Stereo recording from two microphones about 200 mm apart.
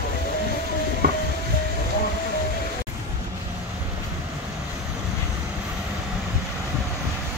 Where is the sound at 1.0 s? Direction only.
50° right (ahead or behind).